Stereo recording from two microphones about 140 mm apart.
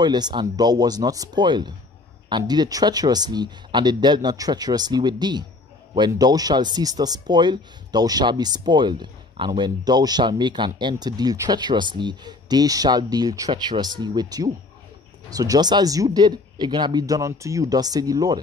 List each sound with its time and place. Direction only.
0.0 s speech: 30° right (ahead or behind)